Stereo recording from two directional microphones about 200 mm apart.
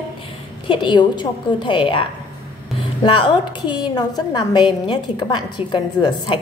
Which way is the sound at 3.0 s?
25° left (ahead or behind).